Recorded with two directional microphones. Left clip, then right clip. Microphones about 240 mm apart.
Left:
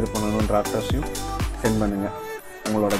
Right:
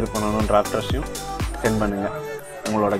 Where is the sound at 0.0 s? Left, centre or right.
Centre.